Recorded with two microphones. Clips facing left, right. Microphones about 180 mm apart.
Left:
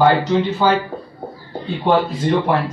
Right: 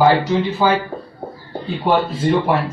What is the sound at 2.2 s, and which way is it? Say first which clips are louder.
Speech: right 2 dB; centre (ahead or behind).